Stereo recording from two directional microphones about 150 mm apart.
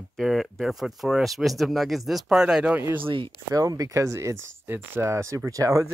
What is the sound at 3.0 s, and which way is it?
Speech, 35° right (ahead or behind).